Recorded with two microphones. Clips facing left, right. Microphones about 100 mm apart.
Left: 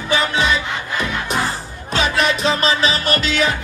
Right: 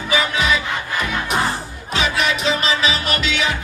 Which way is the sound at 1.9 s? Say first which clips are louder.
Left 2 dB; 35° left (ahead or behind).